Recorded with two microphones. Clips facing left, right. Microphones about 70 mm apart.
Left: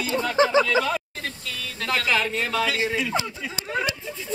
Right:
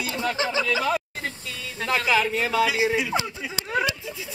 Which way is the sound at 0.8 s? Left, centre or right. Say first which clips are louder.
Right 1 dB; centre.